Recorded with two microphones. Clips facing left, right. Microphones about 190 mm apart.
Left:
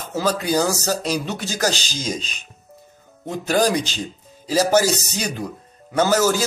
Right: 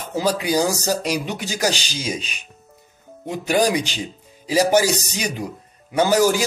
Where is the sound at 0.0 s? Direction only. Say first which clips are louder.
Right 1 dB; 10° right (ahead or behind).